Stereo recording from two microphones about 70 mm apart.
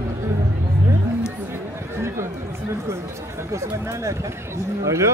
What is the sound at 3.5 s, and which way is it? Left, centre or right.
Speech, right.